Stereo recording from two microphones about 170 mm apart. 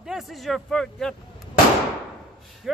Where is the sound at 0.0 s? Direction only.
Centre (ahead or behind).